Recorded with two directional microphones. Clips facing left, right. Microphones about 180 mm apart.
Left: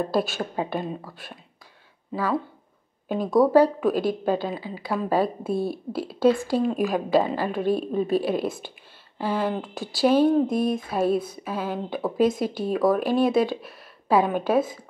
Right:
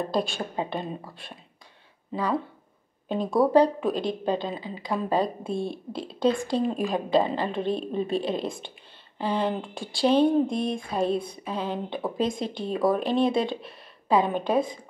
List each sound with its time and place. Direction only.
0.0 s a woman's voice: 5° left (ahead or behind)
3.1 s a woman's voice: centre (ahead or behind)
9.2 s speech: 20° right (ahead or behind)
9.5 s a woman's voice: centre (ahead or behind)
13.5 s a sound: 5° left (ahead or behind)
14.3 s a woman's voice: 5° left (ahead or behind)